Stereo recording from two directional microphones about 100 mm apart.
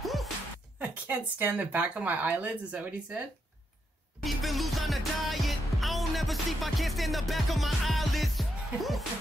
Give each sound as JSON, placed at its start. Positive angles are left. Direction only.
{"t": 0.0, "sound": "music", "side_deg": 0}
{"t": 0.7, "sound": "speech", "side_deg": -15}
{"t": 4.2, "sound": "music", "side_deg": 0}